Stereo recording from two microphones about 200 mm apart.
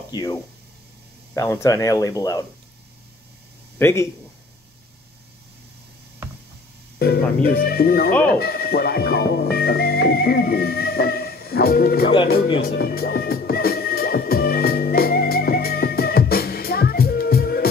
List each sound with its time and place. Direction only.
0.1 s speech: 15° left (ahead or behind)
3.7 s speech: 15° left (ahead or behind)
7.0 s speech: 50° left (ahead or behind)
12.5 s music: 55° left (ahead or behind)